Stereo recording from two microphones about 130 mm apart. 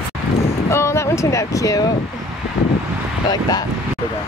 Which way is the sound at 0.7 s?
20° left (ahead or behind).